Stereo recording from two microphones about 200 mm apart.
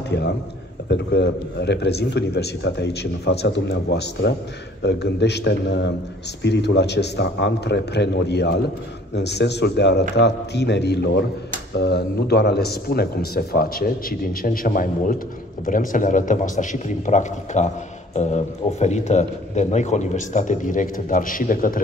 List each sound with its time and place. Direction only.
0.8 s a man's voice: 55° left (ahead or behind)